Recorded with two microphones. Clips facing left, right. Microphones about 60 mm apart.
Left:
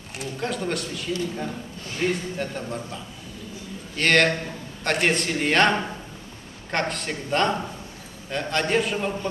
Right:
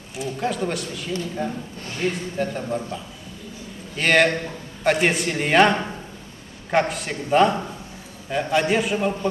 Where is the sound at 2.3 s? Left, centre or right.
Centre.